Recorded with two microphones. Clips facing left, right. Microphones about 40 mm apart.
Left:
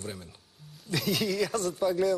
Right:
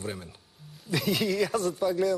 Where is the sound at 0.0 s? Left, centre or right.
Centre.